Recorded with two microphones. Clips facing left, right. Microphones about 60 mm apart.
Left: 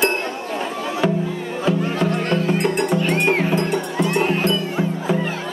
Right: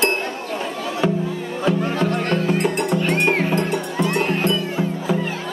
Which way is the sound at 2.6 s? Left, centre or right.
Centre.